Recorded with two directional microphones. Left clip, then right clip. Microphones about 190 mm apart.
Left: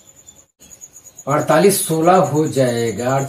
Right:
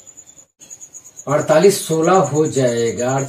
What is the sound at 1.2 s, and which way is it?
A man's voice, 20° right (ahead or behind).